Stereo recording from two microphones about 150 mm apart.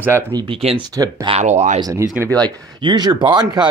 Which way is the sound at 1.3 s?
50° right (ahead or behind).